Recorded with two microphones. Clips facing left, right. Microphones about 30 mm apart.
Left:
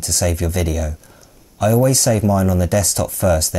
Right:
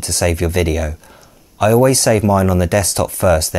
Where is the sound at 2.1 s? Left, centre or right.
Right.